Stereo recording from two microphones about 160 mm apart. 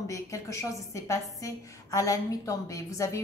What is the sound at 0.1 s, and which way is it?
A woman's voice, 20° left (ahead or behind).